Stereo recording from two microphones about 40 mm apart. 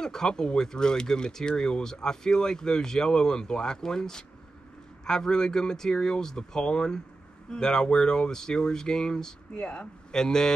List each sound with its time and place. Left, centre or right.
0.0 s speech: centre